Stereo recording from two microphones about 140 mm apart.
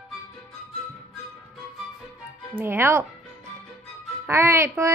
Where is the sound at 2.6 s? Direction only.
15° right (ahead or behind).